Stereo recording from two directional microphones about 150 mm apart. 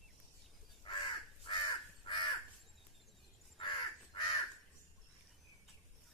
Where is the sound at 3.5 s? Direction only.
35° left (ahead or behind).